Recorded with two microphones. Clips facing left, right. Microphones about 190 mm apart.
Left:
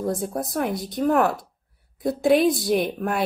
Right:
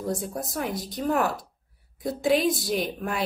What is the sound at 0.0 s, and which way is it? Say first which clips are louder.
Speech: left 4 dB; 50° left (ahead or behind).